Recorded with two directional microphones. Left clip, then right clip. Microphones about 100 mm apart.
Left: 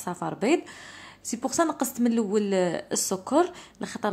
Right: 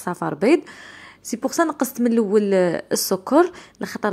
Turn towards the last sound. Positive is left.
turn(degrees=-45)  # may be behind; listen again after turning